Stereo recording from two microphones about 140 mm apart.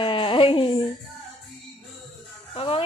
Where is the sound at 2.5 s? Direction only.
40° left (ahead or behind).